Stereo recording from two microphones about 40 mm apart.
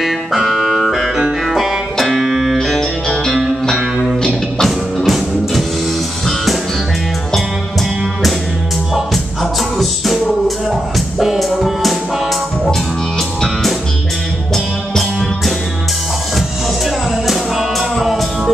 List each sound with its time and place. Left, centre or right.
0.0 s music: centre
2.6 s music: centre
4.2 s music: left
4.6 s music: centre
8.9 s music: centre